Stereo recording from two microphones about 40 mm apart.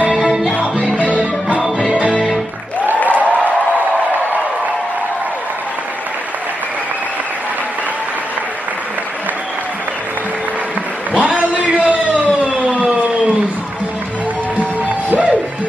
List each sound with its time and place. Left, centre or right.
0.0 s music: right
0.9 s music: left
1.9 s music: right
3.1 s a sound: right
11.1 s a sound: right
14.6 s music: right